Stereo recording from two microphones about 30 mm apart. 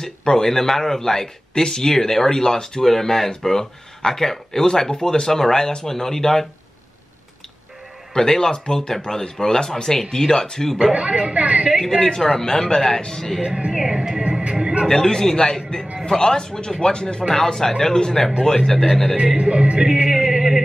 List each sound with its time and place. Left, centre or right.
0.0 s a man's voice: left
2.8 s speech: centre
8.1 s a man's voice: left
9.0 s a man's voice: left
9.4 s a man's voice: centre
11.0 s a woman's voice: right
11.9 s a man's voice: centre
13.7 s speech: right
14.2 s speech: right
14.9 s a man's voice: centre
17.3 s speech: centre
19.3 s speech: right
20.0 s music: right
20.2 s music: centre